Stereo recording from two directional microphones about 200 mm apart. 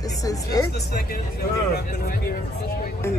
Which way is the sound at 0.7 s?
55° left (ahead or behind).